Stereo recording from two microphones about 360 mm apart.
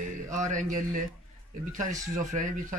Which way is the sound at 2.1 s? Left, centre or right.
Right.